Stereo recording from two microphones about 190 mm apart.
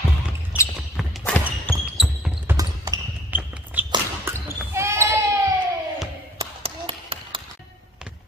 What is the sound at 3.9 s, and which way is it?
Basketball bounce, 15° right (ahead or behind).